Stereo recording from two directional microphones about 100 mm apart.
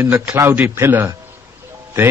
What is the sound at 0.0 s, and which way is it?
Speech, 20° right (ahead or behind).